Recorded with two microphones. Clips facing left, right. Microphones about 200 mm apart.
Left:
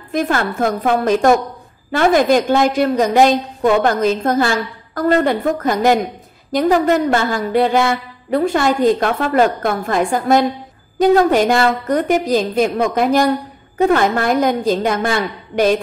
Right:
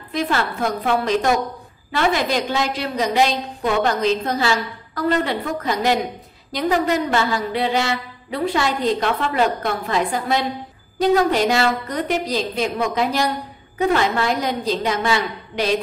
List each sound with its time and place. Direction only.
0.1 s a woman's voice: 50° left (ahead or behind)